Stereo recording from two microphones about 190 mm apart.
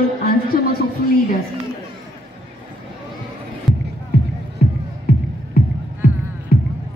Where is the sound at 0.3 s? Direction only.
50° left (ahead or behind).